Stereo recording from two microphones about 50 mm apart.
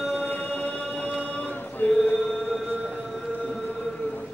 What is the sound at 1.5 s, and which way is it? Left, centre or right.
Chant, left.